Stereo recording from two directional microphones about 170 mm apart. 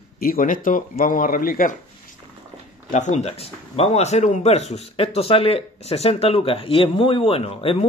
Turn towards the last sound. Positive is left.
turn(degrees=35)  # may be behind; listen again after turning